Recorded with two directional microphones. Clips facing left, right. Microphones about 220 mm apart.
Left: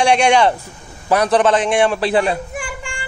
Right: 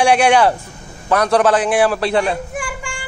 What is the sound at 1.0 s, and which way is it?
A man's voice, 5° left (ahead or behind).